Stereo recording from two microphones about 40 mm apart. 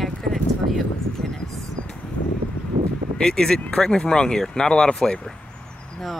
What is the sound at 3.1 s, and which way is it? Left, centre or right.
Speech, centre.